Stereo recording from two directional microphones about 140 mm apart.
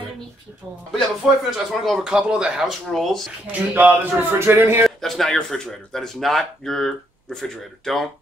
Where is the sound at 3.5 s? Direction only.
10° right (ahead or behind).